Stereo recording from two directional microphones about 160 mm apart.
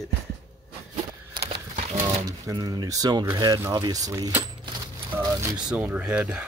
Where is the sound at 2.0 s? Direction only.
20° right (ahead or behind).